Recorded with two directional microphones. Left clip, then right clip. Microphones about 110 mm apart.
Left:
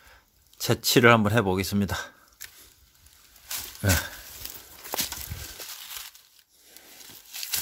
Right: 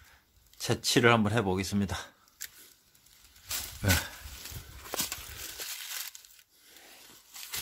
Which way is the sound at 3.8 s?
30° left (ahead or behind).